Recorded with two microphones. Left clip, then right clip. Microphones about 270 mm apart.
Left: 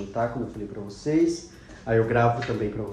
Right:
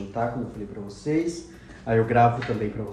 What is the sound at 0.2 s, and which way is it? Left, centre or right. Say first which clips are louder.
Speech: even; centre.